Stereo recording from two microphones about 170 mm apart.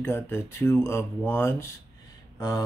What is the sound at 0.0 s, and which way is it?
Speech, 15° left (ahead or behind).